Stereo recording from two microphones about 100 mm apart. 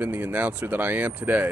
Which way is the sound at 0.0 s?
15° right (ahead or behind).